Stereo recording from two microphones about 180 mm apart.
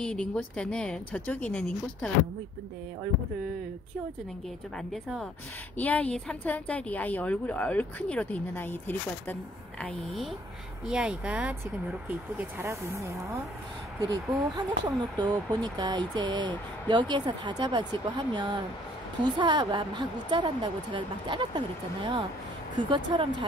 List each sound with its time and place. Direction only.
0.0 s speech: 5° left (ahead or behind)
4.7 s a woman's voice: centre (ahead or behind)
10.9 s speech: 5° right (ahead or behind); by 23.4 s 25° right (ahead or behind)